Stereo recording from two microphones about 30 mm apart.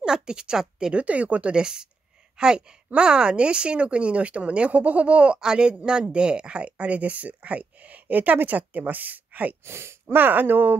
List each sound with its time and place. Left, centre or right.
0.0 s a woman's voice: right
0.9 s speech: right
1.5 s speech: right
5.4 s speech: right
10.1 s speech: right